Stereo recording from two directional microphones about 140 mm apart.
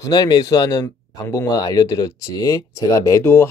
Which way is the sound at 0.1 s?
30° left (ahead or behind).